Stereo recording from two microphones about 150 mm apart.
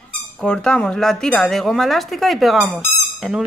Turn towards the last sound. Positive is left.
turn(degrees=0)  # may be behind; listen again after turning